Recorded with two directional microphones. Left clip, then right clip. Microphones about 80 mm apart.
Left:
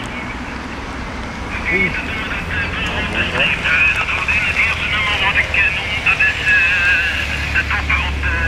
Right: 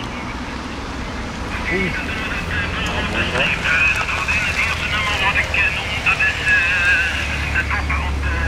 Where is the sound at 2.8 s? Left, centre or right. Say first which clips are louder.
Left 2 dB; centre.